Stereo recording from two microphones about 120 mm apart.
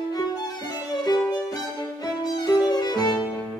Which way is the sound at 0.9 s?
35° left (ahead or behind).